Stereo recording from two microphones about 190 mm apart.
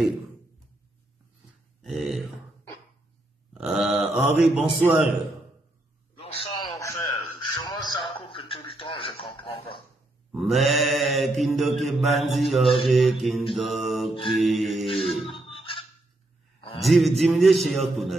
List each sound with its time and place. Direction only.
1.8 s a sound: centre (ahead or behind)
3.5 s mantra: 5° right (ahead or behind)
6.2 s a sound: 30° left (ahead or behind)
6.7 s a sound: 15° left (ahead or behind)
7.5 s radio: 20° left (ahead or behind)
10.3 s mantra: centre (ahead or behind)
14.2 s music: centre (ahead or behind)
15.3 s beatboxing: 25° left (ahead or behind)
16.8 s mantra: centre (ahead or behind)